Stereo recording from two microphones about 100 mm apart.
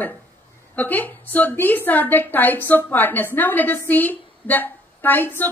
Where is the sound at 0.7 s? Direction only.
15° left (ahead or behind).